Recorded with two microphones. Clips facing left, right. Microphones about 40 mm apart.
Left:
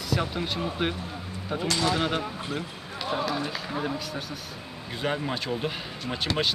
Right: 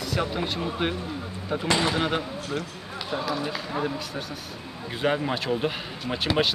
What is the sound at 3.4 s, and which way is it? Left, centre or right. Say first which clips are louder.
Speech: right 2 dB; centre.